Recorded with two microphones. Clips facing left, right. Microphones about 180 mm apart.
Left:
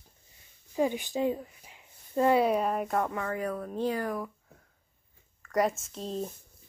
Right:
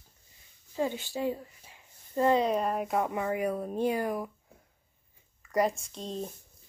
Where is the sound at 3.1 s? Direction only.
15° right (ahead or behind).